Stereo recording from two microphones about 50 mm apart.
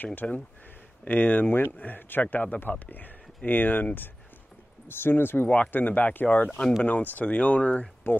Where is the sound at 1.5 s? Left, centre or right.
Left.